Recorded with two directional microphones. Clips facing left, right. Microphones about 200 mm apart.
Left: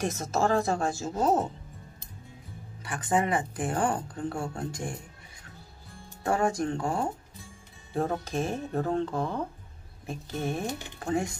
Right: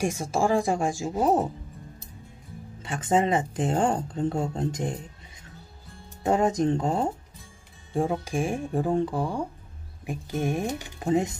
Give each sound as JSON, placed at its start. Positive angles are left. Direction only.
{"t": 0.0, "sound": "speech", "side_deg": -10}
{"t": 2.8, "sound": "speech", "side_deg": -20}
{"t": 6.2, "sound": "speech", "side_deg": -20}